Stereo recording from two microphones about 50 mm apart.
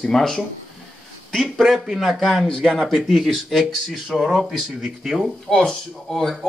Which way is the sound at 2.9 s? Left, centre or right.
Centre.